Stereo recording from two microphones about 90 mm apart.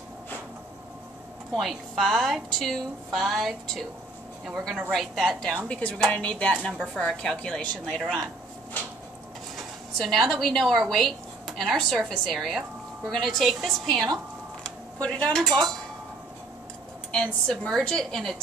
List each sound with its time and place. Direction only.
1.5 s a woman's voice: centre (ahead or behind)
5.1 s a woman's voice: centre (ahead or behind)
5.7 s a woman's voice: 15° left (ahead or behind)
9.9 s a woman's voice: centre (ahead or behind)
14.6 s a sound: 10° left (ahead or behind)
15.4 s a woman's voice: 5° left (ahead or behind)
17.1 s a woman's voice: 5° left (ahead or behind)